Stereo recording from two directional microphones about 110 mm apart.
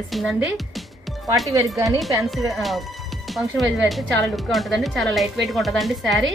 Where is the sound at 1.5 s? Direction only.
30° right (ahead or behind).